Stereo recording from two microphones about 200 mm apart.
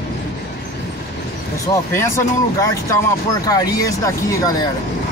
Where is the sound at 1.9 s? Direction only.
15° left (ahead or behind).